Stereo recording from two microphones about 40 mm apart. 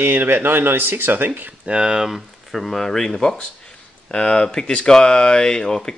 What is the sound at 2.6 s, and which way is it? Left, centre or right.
A man's voice, centre.